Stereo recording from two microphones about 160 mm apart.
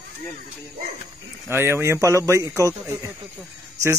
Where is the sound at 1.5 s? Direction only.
15° right (ahead or behind).